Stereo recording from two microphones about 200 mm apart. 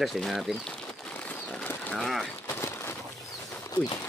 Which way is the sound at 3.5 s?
15° left (ahead or behind).